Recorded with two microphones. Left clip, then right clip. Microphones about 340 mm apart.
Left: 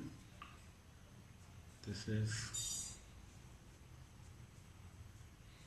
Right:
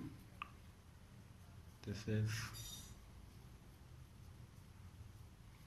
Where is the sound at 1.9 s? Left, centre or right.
Centre.